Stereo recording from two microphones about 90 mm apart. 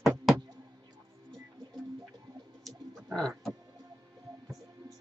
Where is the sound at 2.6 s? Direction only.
5° left (ahead or behind).